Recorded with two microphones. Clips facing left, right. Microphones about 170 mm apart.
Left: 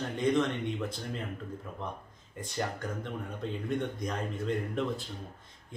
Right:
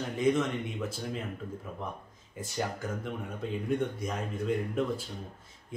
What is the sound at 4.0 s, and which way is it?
Speech, 5° right (ahead or behind).